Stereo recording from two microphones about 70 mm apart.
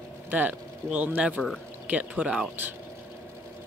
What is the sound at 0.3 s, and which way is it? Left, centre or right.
Speech, right.